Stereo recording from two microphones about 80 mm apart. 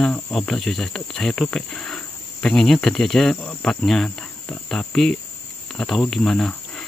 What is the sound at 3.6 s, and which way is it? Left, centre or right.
Cricket, centre.